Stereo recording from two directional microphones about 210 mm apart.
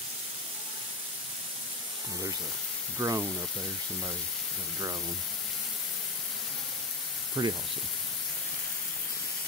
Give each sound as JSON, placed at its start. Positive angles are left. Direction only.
{"t": 3.0, "sound": "speech", "side_deg": -15}
{"t": 7.4, "sound": "speech", "side_deg": -20}